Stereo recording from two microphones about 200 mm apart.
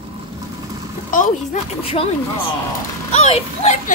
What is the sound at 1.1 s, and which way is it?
Speech, 40° left (ahead or behind).